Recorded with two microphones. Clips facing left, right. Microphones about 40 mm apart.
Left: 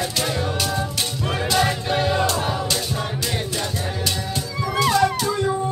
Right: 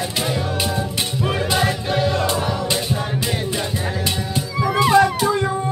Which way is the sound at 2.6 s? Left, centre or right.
Centre.